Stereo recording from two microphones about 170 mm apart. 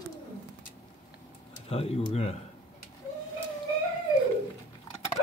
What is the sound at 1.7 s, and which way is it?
Speech, 35° left (ahead or behind).